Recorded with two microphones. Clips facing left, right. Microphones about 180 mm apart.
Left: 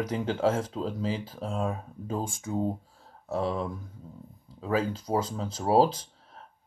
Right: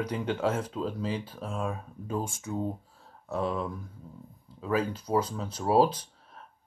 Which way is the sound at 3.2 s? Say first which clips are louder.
Left 1 dB; 30° left (ahead or behind).